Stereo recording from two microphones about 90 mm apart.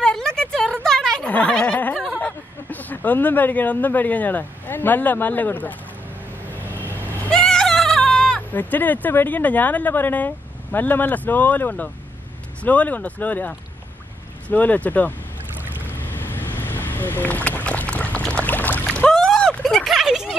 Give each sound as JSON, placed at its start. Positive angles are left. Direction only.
{"t": 0.0, "sound": "a sound", "side_deg": 5}
{"t": 2.1, "sound": "speech", "side_deg": 15}
{"t": 6.7, "sound": "vehicle", "side_deg": 20}
{"t": 7.2, "sound": "vehicle", "side_deg": 10}
{"t": 8.0, "sound": "speech", "side_deg": 10}
{"t": 15.7, "sound": "boat", "side_deg": 20}
{"t": 18.9, "sound": "a sound", "side_deg": 10}